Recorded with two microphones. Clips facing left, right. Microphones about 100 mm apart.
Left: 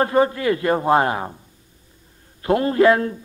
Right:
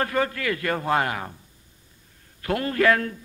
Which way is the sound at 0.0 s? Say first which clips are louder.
Left 7 dB; 25° left (ahead or behind).